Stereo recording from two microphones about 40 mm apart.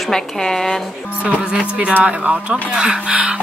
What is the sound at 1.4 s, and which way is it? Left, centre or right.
Speech, right.